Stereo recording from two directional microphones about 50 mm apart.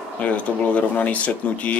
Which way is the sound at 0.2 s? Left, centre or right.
Left.